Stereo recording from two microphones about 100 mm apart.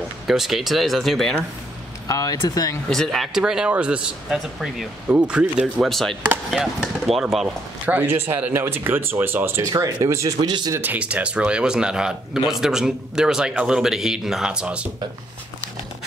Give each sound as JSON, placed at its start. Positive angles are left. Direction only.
{"t": 0.3, "sound": "speech", "side_deg": 0}
{"t": 2.0, "sound": "speech", "side_deg": 35}
{"t": 2.9, "sound": "speech", "side_deg": 5}
{"t": 5.9, "sound": "speech", "side_deg": 0}
{"t": 7.4, "sound": "speech", "side_deg": -15}
{"t": 10.7, "sound": "speech", "side_deg": -20}